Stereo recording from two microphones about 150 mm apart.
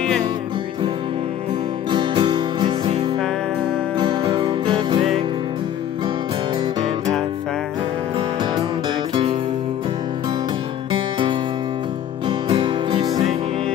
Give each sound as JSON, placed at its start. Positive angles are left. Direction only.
{"t": 1.9, "sound": "music", "side_deg": -30}
{"t": 9.1, "sound": "music", "side_deg": -35}
{"t": 10.9, "sound": "music", "side_deg": -35}